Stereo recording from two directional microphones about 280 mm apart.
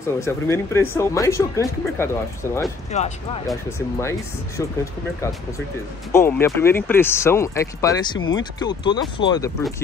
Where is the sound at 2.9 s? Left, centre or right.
Left.